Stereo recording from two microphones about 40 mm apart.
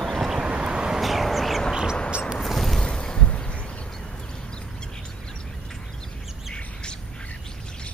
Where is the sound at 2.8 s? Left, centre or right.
Left.